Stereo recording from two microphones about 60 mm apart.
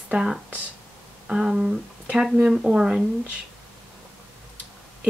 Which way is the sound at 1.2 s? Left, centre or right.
Centre.